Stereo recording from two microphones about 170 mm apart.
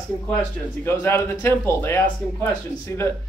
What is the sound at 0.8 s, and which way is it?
Speech, 15° left (ahead or behind).